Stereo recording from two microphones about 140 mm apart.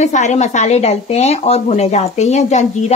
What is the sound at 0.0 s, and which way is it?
Speech, 55° left (ahead or behind).